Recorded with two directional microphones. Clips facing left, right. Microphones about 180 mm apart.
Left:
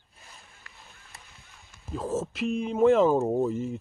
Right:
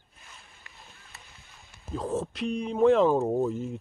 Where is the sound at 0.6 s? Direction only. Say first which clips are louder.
Even; 20° right (ahead or behind).